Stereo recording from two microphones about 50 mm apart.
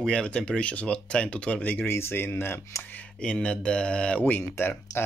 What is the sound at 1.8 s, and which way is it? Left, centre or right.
Speech, left.